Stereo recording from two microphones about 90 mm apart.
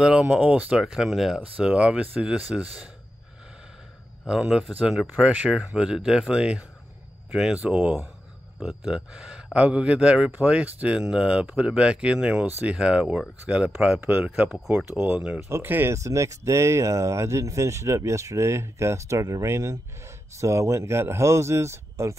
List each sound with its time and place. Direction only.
0.0 s speech: 10° right (ahead or behind)
4.3 s speech: 10° right (ahead or behind)
8.5 s speech: 10° right (ahead or behind)
15.4 s speech: 25° right (ahead or behind)